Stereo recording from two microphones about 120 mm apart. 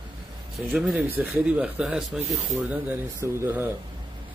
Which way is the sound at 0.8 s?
Centre (ahead or behind).